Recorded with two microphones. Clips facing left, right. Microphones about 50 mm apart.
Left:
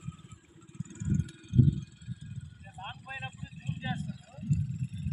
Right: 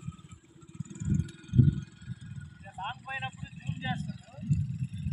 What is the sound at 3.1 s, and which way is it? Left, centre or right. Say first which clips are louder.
Speech: right 4 dB; right.